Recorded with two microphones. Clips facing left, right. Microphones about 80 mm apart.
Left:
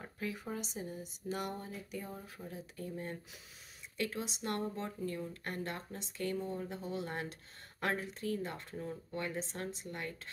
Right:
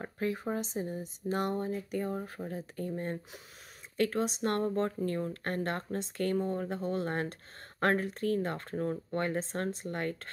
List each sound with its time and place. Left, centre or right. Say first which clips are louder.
0.0 s speech: right 8 dB; right